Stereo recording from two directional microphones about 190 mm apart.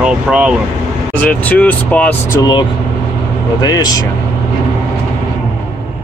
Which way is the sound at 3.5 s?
20° left (ahead or behind).